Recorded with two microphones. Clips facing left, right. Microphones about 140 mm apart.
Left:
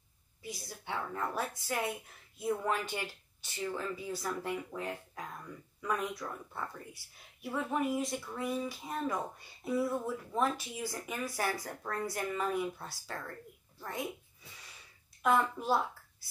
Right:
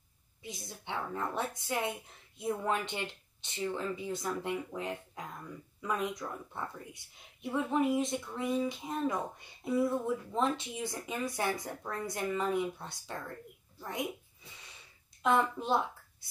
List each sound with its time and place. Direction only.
0.4 s a woman's voice: 20° right (ahead or behind)
15.2 s a child's voice: 25° right (ahead or behind)